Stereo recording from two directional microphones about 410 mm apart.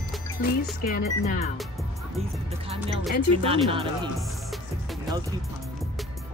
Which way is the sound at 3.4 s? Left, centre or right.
Centre.